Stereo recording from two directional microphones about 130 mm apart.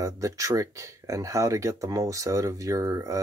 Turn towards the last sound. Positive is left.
turn(degrees=-25)  # may be behind; listen again after turning